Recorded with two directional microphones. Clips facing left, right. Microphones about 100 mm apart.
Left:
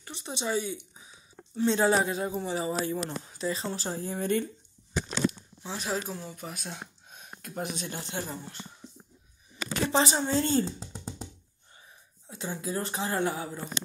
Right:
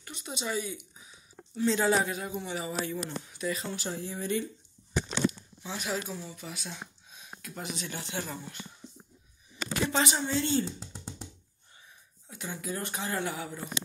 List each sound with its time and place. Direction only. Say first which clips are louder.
0.0 s a woman's voice: left 3 dB; 30° left (ahead or behind); by 4.5 s 50° left (ahead or behind)
5.6 s a woman's voice: left 2 dB; 30° left (ahead or behind)
6.1 s speech: left 1 dB; 45° left (ahead or behind)
9.9 s a woman's voice: left 5 dB; 35° left (ahead or behind)
10.8 s music: left 3 dB; 25° left (ahead or behind)
12.3 s speech: left 3 dB; 30° left (ahead or behind)